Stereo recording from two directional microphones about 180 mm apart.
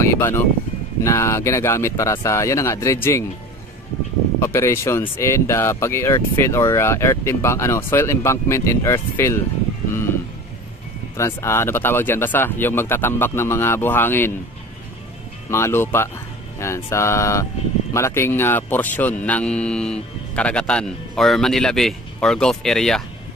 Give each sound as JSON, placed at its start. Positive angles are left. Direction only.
{"t": 0.0, "sound": "speech", "side_deg": 15}
{"t": 4.4, "sound": "speech", "side_deg": 15}
{"t": 11.1, "sound": "speech", "side_deg": 15}
{"t": 15.5, "sound": "speech", "side_deg": 15}